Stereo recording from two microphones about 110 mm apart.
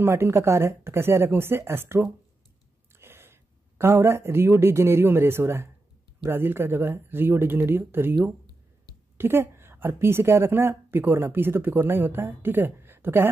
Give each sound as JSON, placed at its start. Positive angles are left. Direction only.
{"t": 0.0, "sound": "a woman's voice", "side_deg": -25}
{"t": 9.2, "sound": "a woman's voice", "side_deg": -20}